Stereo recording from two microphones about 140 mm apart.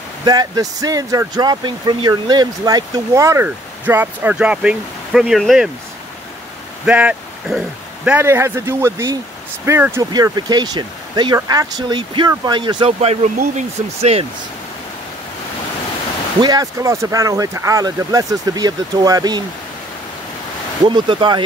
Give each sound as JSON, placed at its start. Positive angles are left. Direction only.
{"t": 0.2, "sound": "speech", "side_deg": -25}
{"t": 6.9, "sound": "speech", "side_deg": -10}
{"t": 10.1, "sound": "speech", "side_deg": -30}
{"t": 13.0, "sound": "speech", "side_deg": -45}
{"t": 16.3, "sound": "speech", "side_deg": -30}
{"t": 20.8, "sound": "speech", "side_deg": -35}